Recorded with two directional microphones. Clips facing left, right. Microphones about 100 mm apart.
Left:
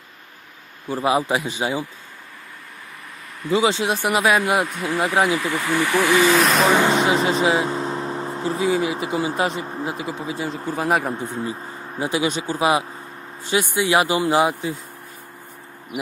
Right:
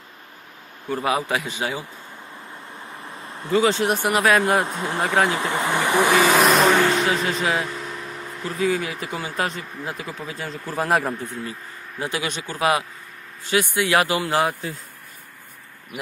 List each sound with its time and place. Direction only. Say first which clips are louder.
0.8 s speech: left 3 dB; 25° left (ahead or behind)
3.5 s speech: even; 20° left (ahead or behind)
4.3 s speech: right 1 dB; 5° left (ahead or behind)
4.6 s speech: left 2 dB; 25° right (ahead or behind)
5.0 s speech: left 1 dB; 20° left (ahead or behind)
5.3 s speech: left 1 dB; 20° right (ahead or behind)
6.4 s speech: right 1 dB; centre (ahead or behind)
6.7 s speech: left 2 dB; 20° left (ahead or behind)
10.8 s speech: even; centre (ahead or behind)
11.1 s speech: left 4 dB; 25° left (ahead or behind)